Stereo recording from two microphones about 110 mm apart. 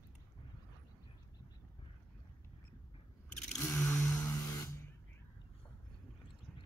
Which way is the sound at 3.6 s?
20° left (ahead or behind).